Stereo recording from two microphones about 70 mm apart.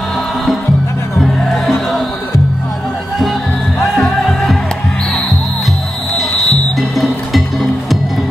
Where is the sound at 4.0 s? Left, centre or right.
Centre.